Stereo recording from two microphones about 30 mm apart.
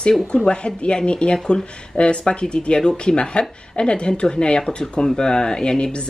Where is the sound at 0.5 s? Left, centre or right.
Left.